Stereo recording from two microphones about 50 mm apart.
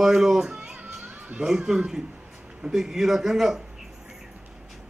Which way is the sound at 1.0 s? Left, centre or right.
Right.